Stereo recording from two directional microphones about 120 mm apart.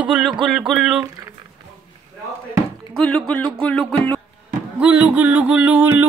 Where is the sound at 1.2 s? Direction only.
30° right (ahead or behind).